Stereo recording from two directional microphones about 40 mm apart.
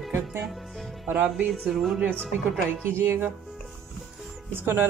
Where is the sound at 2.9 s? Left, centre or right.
Right.